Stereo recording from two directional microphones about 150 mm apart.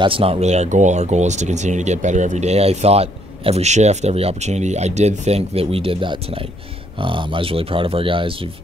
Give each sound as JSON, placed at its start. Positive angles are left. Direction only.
{"t": 0.0, "sound": "speech", "side_deg": -40}